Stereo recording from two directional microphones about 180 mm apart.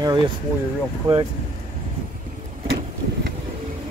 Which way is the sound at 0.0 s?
25° right (ahead or behind).